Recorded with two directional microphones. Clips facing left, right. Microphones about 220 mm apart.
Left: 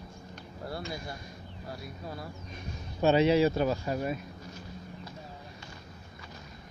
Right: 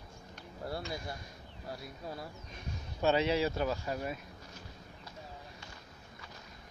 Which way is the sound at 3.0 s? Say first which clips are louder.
Left 6 dB; 15° left (ahead or behind).